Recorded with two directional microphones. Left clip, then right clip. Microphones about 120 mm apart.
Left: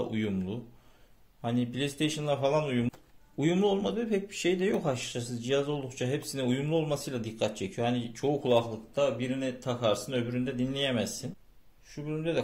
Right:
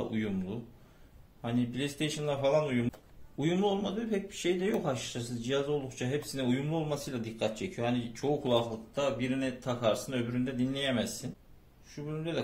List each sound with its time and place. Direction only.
0.0 s a man's voice: 45° left (ahead or behind)